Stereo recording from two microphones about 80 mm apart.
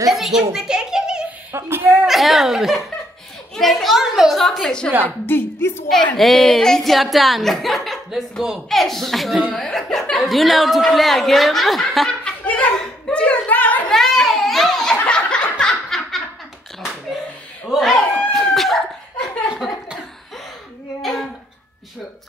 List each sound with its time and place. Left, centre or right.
0.1 s a child's voice: centre
1.5 s speech: right
2.0 s a woman's voice: centre
5.0 s a woman's voice: left
6.1 s a woman's voice: centre
12.4 s speech: centre
13.8 s a sound: centre
15.6 s snicker: centre
17.6 s a sound: centre
21.0 s child singing: centre